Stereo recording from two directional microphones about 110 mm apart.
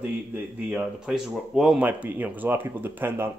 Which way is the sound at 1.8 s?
15° right (ahead or behind).